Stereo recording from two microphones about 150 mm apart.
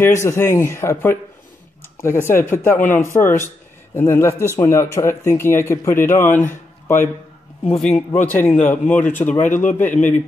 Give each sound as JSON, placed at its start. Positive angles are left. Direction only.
{"t": 0.0, "sound": "a man's voice", "side_deg": 20}
{"t": 9.5, "sound": "speech", "side_deg": 60}
{"t": 9.8, "sound": "speech", "side_deg": 10}